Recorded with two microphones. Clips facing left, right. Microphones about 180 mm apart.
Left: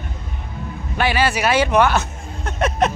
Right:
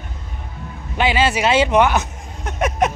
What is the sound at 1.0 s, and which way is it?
Speech, 20° right (ahead or behind).